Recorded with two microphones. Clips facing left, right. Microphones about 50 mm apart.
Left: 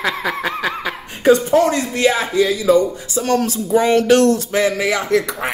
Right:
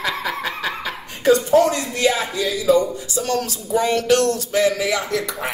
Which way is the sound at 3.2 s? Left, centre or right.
Left.